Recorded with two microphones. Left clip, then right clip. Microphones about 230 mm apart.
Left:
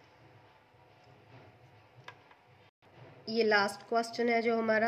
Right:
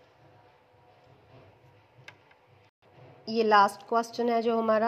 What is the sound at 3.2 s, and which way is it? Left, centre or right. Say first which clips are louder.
A woman's voice: right 6 dB; right.